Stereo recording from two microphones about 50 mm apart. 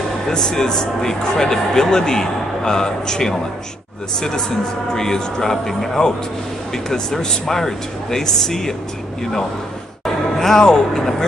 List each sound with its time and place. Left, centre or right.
0.3 s speech: centre
10.0 s speech: centre